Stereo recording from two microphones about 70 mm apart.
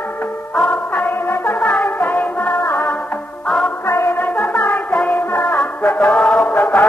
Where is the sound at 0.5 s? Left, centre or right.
Centre.